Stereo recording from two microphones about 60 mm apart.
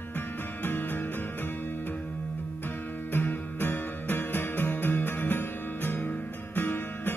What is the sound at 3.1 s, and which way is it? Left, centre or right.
Music, left.